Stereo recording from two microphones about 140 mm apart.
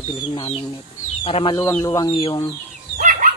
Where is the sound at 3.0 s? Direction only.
70° right (ahead or behind).